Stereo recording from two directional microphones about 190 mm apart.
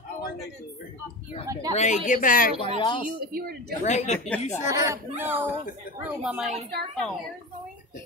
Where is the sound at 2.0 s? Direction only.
45° left (ahead or behind).